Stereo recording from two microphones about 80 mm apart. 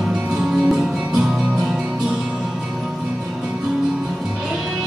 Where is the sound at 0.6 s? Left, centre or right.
Centre.